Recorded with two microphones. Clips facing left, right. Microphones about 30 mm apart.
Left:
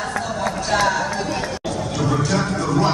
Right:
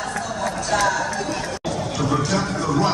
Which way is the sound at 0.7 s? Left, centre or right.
Left.